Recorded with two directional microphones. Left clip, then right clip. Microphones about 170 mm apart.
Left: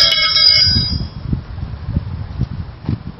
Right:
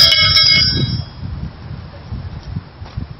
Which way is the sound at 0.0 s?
10° right (ahead or behind).